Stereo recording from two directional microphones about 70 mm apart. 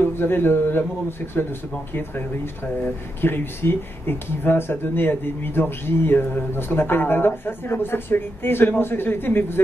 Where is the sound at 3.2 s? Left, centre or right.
Left.